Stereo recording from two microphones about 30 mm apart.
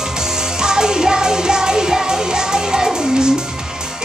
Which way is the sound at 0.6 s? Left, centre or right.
Right.